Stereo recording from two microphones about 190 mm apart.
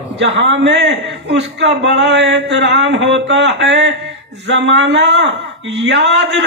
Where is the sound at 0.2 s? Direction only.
75° right (ahead or behind).